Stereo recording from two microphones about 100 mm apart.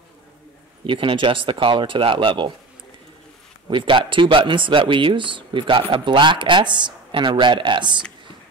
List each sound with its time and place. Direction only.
0.8 s speech: 60° right (ahead or behind)
3.6 s speech: 55° right (ahead or behind)